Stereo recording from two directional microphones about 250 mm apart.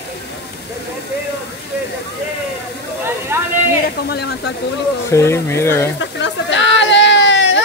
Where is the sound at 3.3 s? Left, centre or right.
Centre.